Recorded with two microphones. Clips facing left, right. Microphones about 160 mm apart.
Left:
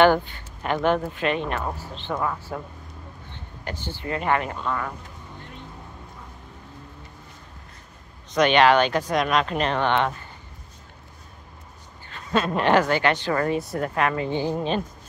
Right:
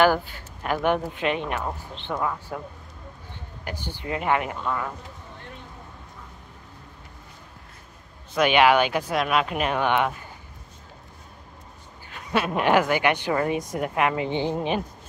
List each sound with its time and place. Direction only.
0.0 s speech: 5° right (ahead or behind)
0.9 s speech: 15° right (ahead or behind)
2.1 s speech: 5° right (ahead or behind)
8.3 s speech: 10° right (ahead or behind)
12.1 s speech: 10° right (ahead or behind)